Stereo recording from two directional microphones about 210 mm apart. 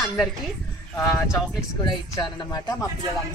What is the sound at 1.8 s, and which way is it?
Speech, 20° left (ahead or behind).